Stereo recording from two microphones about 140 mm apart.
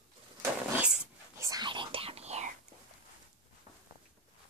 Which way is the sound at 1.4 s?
30° right (ahead or behind).